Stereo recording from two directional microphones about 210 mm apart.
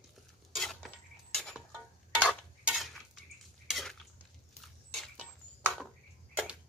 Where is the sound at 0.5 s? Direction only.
Centre (ahead or behind).